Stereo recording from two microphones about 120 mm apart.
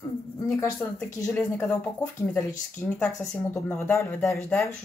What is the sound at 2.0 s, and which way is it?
Speech, 15° left (ahead or behind).